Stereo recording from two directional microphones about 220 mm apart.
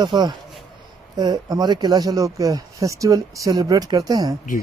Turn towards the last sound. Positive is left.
turn(degrees=-15)  # may be behind; listen again after turning